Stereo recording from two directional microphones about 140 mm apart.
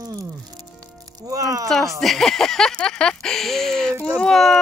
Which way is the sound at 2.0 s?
Centre (ahead or behind).